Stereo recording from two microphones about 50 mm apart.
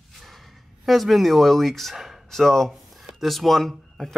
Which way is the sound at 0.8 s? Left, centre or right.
Centre.